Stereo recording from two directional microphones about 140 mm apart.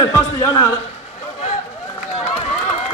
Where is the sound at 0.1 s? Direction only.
25° left (ahead or behind).